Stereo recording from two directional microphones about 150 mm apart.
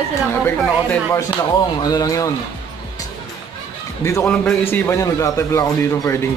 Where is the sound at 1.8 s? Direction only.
25° left (ahead or behind).